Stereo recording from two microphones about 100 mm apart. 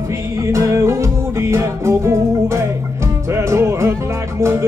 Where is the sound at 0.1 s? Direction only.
30° right (ahead or behind).